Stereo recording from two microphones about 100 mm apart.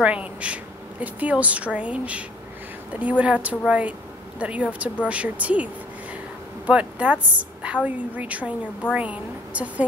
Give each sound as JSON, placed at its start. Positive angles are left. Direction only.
{"t": 0.0, "sound": "speech", "side_deg": -15}